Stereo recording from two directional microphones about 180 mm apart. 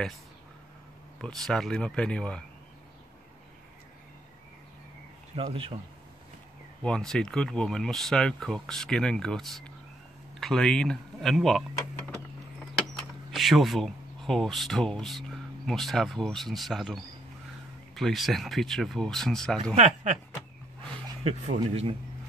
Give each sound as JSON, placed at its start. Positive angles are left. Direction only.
{"t": 1.2, "sound": "speech", "side_deg": 5}
{"t": 5.3, "sound": "speech", "side_deg": -30}
{"t": 6.8, "sound": "speech", "side_deg": 5}
{"t": 13.3, "sound": "speech", "side_deg": 0}
{"t": 19.7, "sound": "speech", "side_deg": -40}
{"t": 21.2, "sound": "speech", "side_deg": -35}